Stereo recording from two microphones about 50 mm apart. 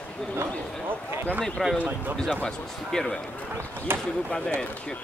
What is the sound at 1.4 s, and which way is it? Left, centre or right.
Speech, centre.